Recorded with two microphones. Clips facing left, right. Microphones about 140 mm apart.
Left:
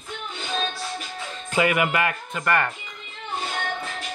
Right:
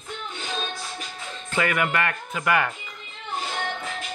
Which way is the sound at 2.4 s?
5° right (ahead or behind).